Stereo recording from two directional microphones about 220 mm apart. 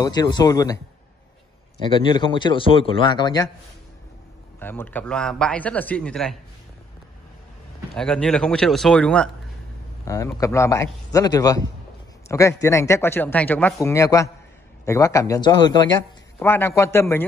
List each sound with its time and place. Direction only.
0.0 s a man's voice: 20° left (ahead or behind)
1.8 s a man's voice: 20° left (ahead or behind)
4.6 s a man's voice: 10° left (ahead or behind)
7.9 s a man's voice: 5° left (ahead or behind)